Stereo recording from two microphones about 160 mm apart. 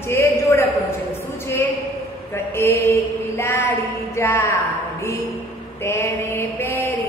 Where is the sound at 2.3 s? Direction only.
15° left (ahead or behind).